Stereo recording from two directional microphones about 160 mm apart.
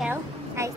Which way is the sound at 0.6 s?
20° right (ahead or behind).